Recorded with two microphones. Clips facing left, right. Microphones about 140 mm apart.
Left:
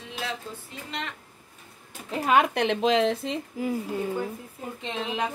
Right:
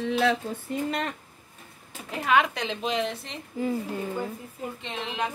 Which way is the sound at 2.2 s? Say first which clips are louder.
Left 2 dB; 45° left (ahead or behind).